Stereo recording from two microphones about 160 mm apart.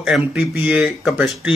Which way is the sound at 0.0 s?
5° right (ahead or behind).